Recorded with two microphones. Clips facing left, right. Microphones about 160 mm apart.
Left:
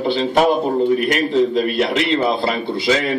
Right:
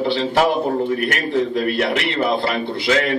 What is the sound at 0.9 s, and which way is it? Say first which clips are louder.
Speech: left 3 dB; 20° left (ahead or behind).